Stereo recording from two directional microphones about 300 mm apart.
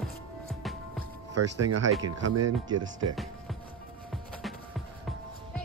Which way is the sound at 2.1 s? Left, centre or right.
Right.